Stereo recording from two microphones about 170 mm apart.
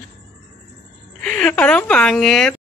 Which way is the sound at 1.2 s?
5° left (ahead or behind).